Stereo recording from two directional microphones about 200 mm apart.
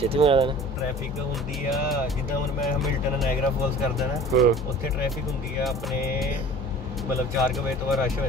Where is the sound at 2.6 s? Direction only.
Centre (ahead or behind).